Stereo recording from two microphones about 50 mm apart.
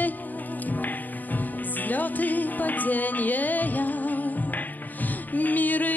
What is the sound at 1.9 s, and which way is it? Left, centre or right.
Music, left.